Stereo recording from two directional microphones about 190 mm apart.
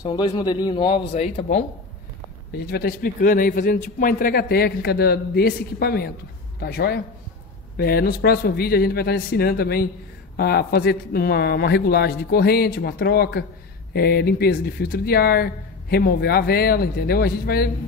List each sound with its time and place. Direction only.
0.0 s a man's voice: 20° left (ahead or behind)
1.1 s speech: 35° left (ahead or behind)
2.5 s a man's voice: 55° left (ahead or behind)